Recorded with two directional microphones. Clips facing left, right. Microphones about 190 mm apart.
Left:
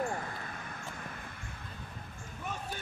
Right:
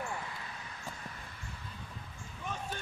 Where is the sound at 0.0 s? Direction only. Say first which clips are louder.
Left 5 dB; 45° left (ahead or behind).